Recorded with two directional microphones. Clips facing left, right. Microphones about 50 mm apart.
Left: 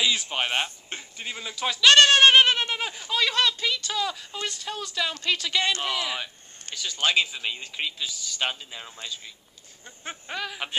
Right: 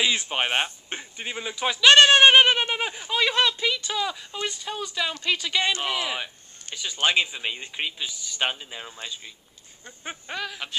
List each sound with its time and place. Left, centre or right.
0.0 s speech: right
10.2 s speech: centre